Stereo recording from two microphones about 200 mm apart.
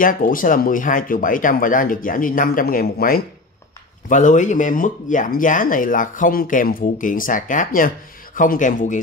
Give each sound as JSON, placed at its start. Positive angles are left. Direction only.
{"t": 0.0, "sound": "speech", "side_deg": 45}